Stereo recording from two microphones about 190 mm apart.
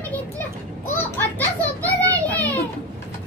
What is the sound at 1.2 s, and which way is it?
Children playing, 10° left (ahead or behind).